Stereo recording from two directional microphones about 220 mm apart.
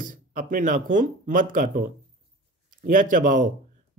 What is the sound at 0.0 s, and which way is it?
Speech, 35° right (ahead or behind).